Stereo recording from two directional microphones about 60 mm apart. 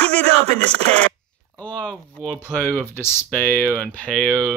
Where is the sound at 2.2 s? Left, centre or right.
Centre.